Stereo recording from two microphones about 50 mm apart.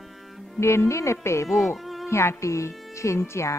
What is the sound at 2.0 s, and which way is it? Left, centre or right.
Speech, left.